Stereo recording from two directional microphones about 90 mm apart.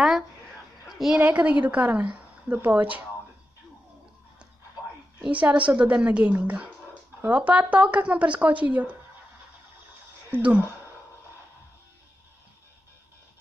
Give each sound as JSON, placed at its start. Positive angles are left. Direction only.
{"t": 0.8, "sound": "a sound", "side_deg": -5}
{"t": 1.2, "sound": "speech", "side_deg": -15}
{"t": 5.2, "sound": "speech", "side_deg": -15}
{"t": 10.3, "sound": "speech", "side_deg": -15}